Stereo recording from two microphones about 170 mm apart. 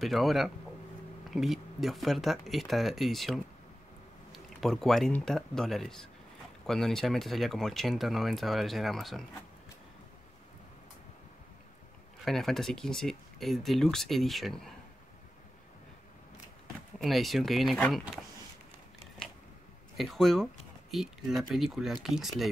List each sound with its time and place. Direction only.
0.0 s speech: centre (ahead or behind)
12.3 s speech: centre (ahead or behind)
17.0 s speech: centre (ahead or behind)
20.0 s speech: centre (ahead or behind)